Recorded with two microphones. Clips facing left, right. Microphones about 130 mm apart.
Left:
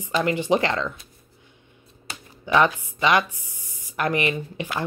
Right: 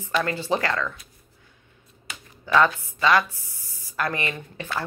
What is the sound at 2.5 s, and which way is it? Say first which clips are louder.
Speech: even; 20° left (ahead or behind).